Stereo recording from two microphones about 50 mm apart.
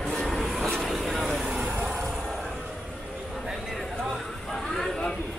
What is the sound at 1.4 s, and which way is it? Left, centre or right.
Vehicle, centre.